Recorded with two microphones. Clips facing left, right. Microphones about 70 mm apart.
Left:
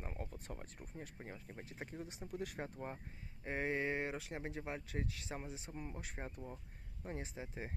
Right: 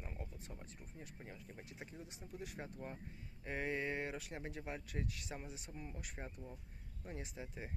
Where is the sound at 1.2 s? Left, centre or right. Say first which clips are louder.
Left 3 dB; left.